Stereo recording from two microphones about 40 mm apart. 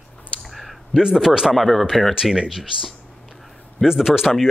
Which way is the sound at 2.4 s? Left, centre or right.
Centre.